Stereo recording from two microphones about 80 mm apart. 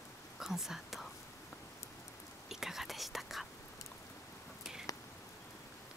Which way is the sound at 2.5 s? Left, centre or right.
Centre.